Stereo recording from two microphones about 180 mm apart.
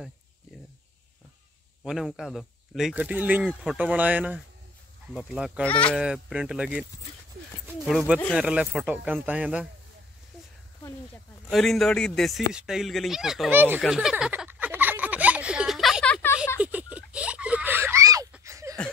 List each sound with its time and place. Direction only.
1.8 s speech: centre (ahead or behind)
5.6 s speech: 5° left (ahead or behind)
6.0 s speech: 5° right (ahead or behind)
11.5 s speech: centre (ahead or behind)
13.7 s a sound: centre (ahead or behind)
16.5 s a sound: 5° right (ahead or behind)